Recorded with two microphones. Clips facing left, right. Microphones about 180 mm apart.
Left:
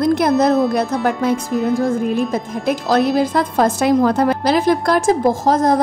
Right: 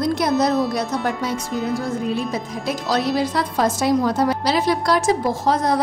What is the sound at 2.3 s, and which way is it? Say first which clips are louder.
A woman's voice: left 5 dB; 50° left (ahead or behind).